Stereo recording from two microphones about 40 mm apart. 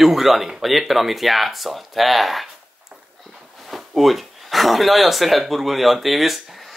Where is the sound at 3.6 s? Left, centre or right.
Centre.